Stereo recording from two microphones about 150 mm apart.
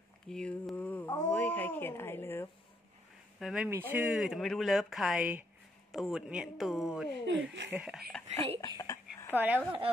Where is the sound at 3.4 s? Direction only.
5° right (ahead or behind).